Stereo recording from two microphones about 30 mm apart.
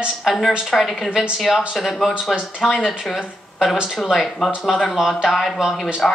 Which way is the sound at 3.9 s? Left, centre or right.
Centre.